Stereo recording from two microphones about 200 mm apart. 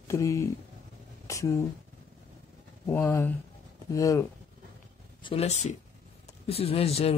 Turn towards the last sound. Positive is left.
turn(degrees=30)  # may be behind; listen again after turning